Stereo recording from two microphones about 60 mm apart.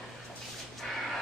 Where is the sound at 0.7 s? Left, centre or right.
Centre.